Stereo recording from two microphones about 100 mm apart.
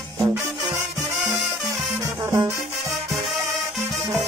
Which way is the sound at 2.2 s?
25° right (ahead or behind).